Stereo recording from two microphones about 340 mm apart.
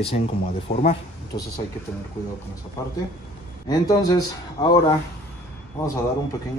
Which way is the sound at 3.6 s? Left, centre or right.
Centre.